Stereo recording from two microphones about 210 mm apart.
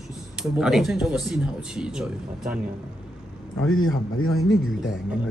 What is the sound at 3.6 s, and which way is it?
Speech, 75° left (ahead or behind).